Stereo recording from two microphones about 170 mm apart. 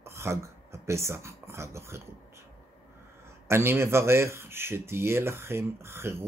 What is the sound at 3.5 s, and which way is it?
Speech, 15° right (ahead or behind).